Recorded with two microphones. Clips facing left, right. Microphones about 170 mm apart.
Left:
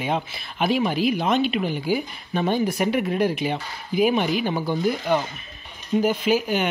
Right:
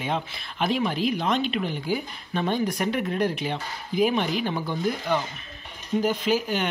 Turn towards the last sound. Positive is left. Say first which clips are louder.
# left 3 dB
turn(degrees=10)  # may be behind; listen again after turning